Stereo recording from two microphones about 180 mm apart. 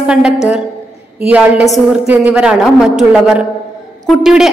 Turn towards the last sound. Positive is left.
turn(degrees=0)  # may be behind; listen again after turning